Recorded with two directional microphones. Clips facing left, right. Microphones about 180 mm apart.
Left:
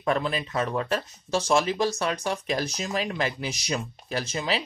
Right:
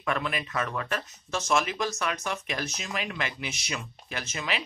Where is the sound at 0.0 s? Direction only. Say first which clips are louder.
Left 4 dB; 30° left (ahead or behind).